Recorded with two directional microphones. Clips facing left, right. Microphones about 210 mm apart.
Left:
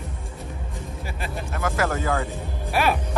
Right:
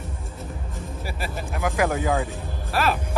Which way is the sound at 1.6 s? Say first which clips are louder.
Right 2 dB; 15° right (ahead or behind).